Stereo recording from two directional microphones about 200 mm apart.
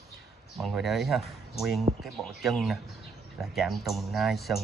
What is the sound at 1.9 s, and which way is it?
Speech, 25° right (ahead or behind).